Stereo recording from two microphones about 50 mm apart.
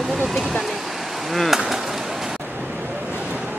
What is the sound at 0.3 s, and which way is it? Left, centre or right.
Speech, centre.